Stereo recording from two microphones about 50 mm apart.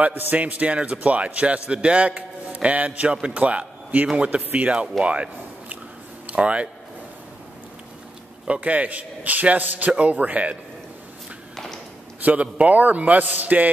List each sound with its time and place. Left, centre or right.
0.0 s a man's voice: right
5.0 s a sound: right
6.2 s speech: right
8.5 s a man's voice: right
11.5 s tap: centre
12.3 s a man's voice: right